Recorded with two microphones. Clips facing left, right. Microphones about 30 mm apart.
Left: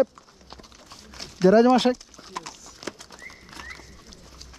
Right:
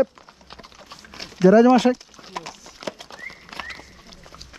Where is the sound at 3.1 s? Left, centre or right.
Right.